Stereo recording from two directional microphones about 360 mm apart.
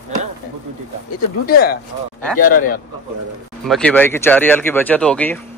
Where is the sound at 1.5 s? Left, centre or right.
Left.